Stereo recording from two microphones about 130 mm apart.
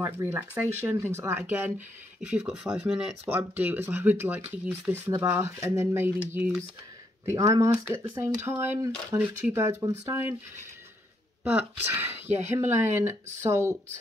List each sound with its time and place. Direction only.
0.0 s speech: 15° right (ahead or behind)
3.3 s speech: 15° right (ahead or behind)
7.2 s speech: 25° right (ahead or behind)
11.9 s speech: 20° right (ahead or behind)